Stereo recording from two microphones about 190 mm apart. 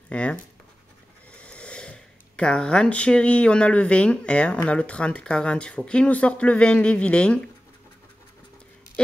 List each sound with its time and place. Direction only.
0.1 s speech: 5° left (ahead or behind)